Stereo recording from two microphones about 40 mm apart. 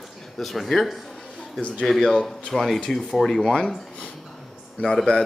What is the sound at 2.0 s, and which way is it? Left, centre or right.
Speech, centre.